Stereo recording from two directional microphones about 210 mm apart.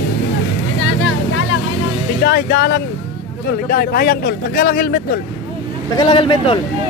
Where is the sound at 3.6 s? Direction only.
45° left (ahead or behind).